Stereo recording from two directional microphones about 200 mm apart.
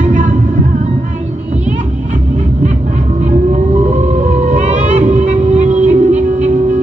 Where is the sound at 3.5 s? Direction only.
35° right (ahead or behind).